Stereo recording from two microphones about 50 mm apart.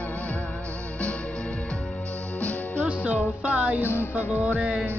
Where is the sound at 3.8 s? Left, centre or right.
Left.